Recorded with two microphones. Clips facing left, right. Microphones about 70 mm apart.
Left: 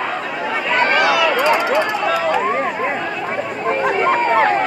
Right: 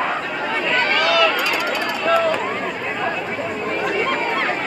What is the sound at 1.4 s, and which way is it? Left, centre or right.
Run, left.